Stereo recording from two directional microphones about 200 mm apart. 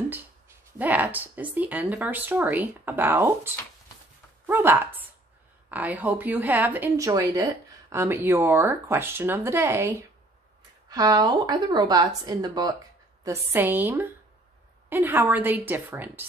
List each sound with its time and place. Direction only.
0.7 s speech: 10° right (ahead or behind)
4.5 s a woman's voice: 10° right (ahead or behind)